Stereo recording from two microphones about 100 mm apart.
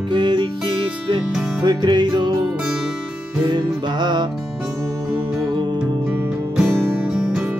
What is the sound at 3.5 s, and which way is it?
Music, 50° right (ahead or behind).